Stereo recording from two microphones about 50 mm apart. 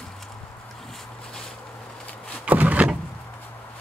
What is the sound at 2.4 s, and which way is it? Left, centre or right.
Vehicle, right.